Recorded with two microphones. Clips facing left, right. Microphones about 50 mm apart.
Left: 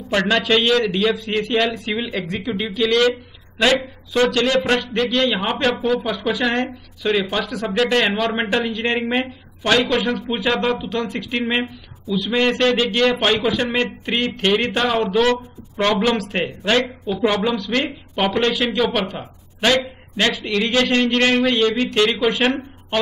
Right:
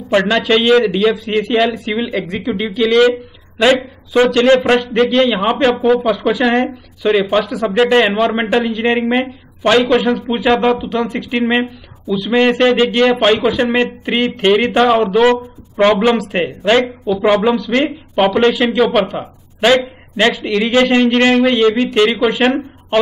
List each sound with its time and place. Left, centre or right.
0.3 s speech: centre
7.7 s speech: right
19.1 s a sound: centre
20.2 s speech: centre